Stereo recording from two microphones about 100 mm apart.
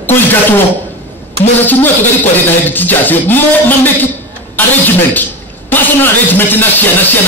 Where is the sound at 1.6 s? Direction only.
20° left (ahead or behind).